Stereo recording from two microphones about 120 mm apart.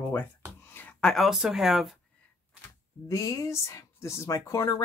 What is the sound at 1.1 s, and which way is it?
Speech, centre (ahead or behind).